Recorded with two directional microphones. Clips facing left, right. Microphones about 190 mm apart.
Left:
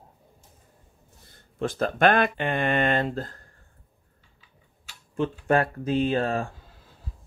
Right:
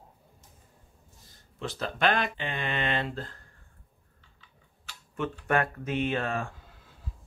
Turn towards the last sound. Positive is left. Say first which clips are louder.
# left 5 dB
turn(degrees=35)  # may be behind; listen again after turning